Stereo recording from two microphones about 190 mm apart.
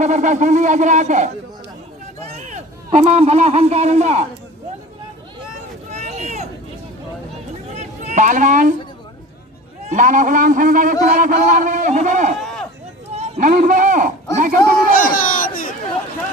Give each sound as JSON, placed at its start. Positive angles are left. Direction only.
{"t": 0.0, "sound": "speech", "side_deg": -40}
{"t": 2.3, "sound": "a man's voice", "side_deg": -35}
{"t": 5.9, "sound": "vehicle", "side_deg": -35}
{"t": 7.7, "sound": "a sound", "side_deg": -35}
{"t": 9.8, "sound": "a man's voice", "side_deg": -40}
{"t": 14.9, "sound": "a sound", "side_deg": 45}